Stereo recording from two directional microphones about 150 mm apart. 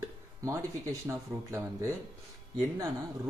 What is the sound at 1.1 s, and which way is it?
Speech, 20° right (ahead or behind).